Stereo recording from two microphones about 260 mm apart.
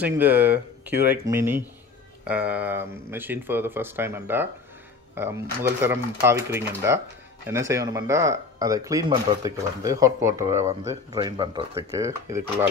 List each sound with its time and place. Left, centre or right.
0.0 s speech: centre
10.6 s speech: right